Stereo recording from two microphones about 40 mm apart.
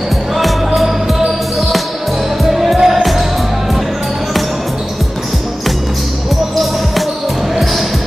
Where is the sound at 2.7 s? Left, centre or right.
Centre.